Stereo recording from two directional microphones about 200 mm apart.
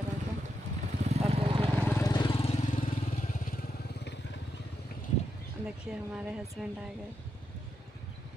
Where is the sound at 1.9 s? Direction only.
15° left (ahead or behind); by 3.1 s 35° left (ahead or behind).